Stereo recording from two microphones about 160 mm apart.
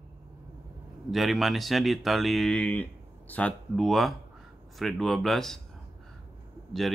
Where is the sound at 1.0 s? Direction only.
Centre (ahead or behind).